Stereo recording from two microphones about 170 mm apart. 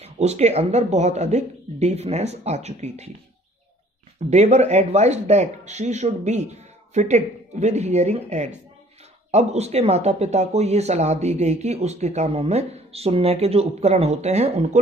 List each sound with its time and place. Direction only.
0.0 s speech: 40° right (ahead or behind)
4.3 s speech: 40° right (ahead or behind)